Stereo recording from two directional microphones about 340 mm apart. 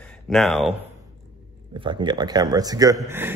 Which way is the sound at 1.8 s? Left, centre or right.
Centre.